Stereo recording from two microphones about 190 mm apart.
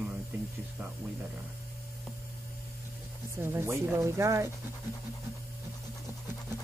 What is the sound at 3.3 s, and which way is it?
Speech, 10° right (ahead or behind).